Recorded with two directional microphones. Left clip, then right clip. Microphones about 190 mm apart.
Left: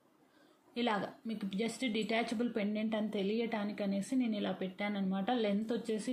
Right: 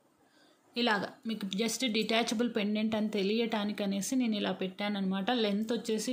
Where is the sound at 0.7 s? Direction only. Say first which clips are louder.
Right 5 dB; 25° right (ahead or behind).